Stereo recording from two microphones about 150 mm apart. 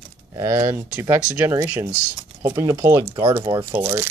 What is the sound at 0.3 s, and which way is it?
Speech, 20° right (ahead or behind).